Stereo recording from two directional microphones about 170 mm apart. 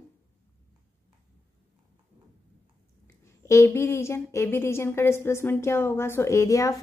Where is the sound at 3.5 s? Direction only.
15° left (ahead or behind).